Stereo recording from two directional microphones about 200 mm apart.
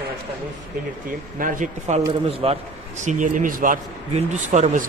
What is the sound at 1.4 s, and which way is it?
A man's voice, 40° right (ahead or behind).